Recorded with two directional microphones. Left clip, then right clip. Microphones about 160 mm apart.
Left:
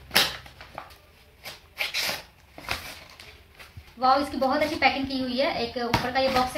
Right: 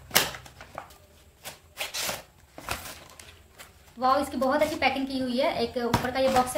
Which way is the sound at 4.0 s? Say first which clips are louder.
Left 2 dB; 20° right (ahead or behind).